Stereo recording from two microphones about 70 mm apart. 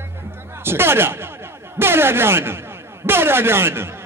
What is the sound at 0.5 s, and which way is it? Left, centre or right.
A man's voice, right.